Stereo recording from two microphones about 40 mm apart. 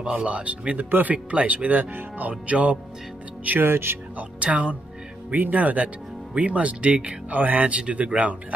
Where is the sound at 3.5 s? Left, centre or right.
Right.